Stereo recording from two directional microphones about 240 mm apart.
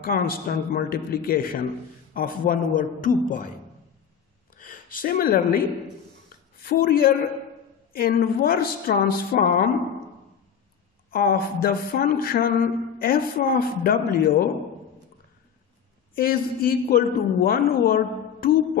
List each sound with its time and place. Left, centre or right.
0.0 s a woman's voice: left
4.6 s speech: left
6.6 s a woman's voice: left
11.1 s a woman's voice: left
16.2 s a woman's voice: left